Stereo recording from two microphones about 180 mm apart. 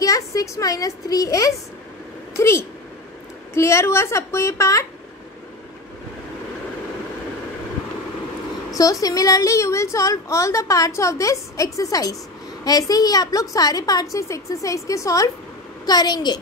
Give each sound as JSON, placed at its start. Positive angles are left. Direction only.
{"t": 0.0, "sound": "a woman's voice", "side_deg": 20}
{"t": 8.7, "sound": "a woman's voice", "side_deg": 20}